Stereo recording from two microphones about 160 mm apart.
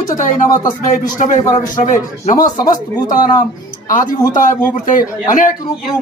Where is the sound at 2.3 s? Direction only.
25° left (ahead or behind).